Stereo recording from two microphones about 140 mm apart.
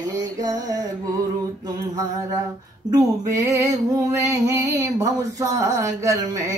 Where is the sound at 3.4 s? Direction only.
20° right (ahead or behind).